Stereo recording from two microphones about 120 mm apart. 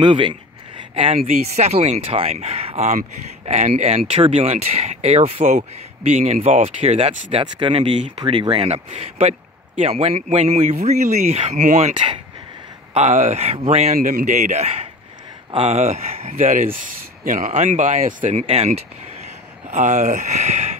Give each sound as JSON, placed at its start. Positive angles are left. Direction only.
{"t": 0.0, "sound": "speech", "side_deg": -45}
{"t": 4.1, "sound": "speech", "side_deg": -55}
{"t": 8.6, "sound": "speech", "side_deg": -55}
{"t": 12.9, "sound": "speech", "side_deg": -80}
{"t": 19.2, "sound": "speech", "side_deg": -85}